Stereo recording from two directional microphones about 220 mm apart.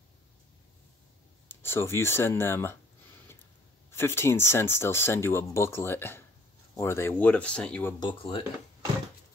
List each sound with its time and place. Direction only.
1.5 s speech: 10° left (ahead or behind)
3.9 s speech: 10° left (ahead or behind)
8.0 s speech: 25° left (ahead or behind)